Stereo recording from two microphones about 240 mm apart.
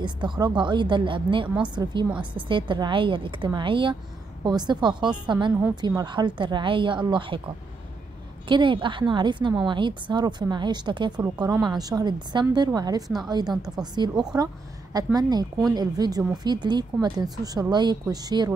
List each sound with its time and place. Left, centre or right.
0.0 s a woman's voice: centre
8.5 s a woman's voice: centre
13.5 s a woman's voice: centre
13.9 s a woman's voice: centre